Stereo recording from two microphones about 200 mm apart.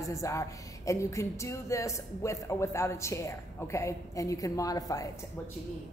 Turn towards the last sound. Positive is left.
turn(degrees=15)  # may be behind; listen again after turning